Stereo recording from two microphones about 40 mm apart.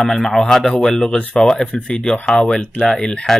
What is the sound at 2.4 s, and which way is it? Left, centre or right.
Speech, left.